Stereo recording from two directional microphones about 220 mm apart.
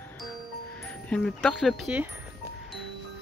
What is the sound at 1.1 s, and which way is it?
Speech, 5° left (ahead or behind).